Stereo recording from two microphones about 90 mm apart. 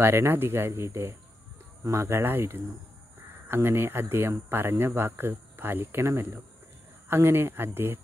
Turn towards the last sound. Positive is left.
turn(degrees=-25)  # may be behind; listen again after turning